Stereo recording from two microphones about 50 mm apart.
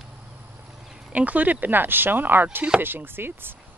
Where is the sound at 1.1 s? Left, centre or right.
Right.